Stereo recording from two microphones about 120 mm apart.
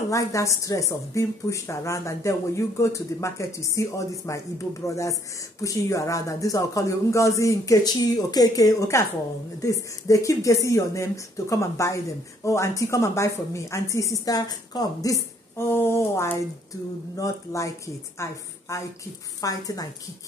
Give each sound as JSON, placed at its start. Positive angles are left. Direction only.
{"t": 0.1, "sound": "speech", "side_deg": 25}